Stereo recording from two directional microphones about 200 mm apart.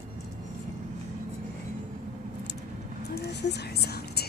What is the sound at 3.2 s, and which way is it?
Whispering, 55° left (ahead or behind).